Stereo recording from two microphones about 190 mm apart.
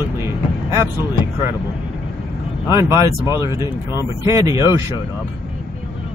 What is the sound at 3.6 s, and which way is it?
Speech, 15° right (ahead or behind).